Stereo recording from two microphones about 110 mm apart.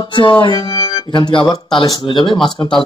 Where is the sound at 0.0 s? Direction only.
45° left (ahead or behind).